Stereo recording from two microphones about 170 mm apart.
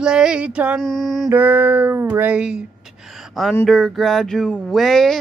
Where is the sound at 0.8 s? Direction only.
Centre (ahead or behind).